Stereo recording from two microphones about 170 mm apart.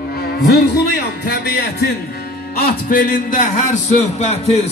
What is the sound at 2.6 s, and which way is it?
A man's voice, 55° left (ahead or behind).